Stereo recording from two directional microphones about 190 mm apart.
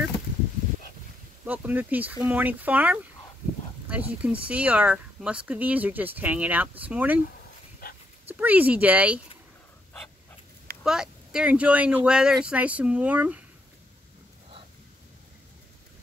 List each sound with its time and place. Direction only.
1.4 s speech: 10° right (ahead or behind)
7.8 s dog: 50° left (ahead or behind)
8.4 s speech: 10° right (ahead or behind)
10.8 s speech: 5° right (ahead or behind)